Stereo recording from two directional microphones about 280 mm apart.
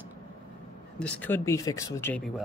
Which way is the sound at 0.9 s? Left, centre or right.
Centre.